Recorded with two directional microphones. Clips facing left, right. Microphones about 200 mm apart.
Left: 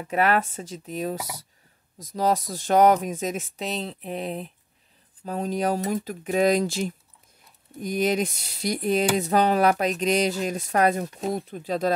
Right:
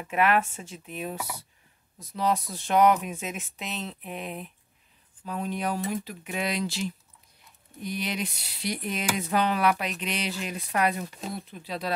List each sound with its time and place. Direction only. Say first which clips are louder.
0.0 s speech: left 2 dB; 35° left (ahead or behind)